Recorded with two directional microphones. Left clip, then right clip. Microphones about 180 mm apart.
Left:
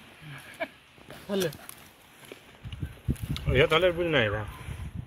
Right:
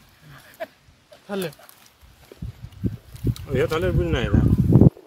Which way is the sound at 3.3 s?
85° right.